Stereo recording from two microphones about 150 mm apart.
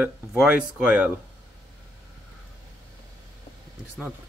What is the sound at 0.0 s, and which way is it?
Speech, 5° right (ahead or behind).